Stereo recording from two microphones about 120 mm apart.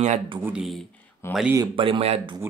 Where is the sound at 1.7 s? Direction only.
50° right (ahead or behind).